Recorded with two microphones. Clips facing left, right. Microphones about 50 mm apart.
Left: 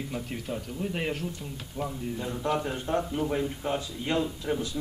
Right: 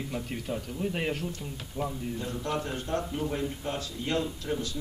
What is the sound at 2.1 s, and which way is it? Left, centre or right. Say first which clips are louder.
A man's voice: left 6 dB; centre.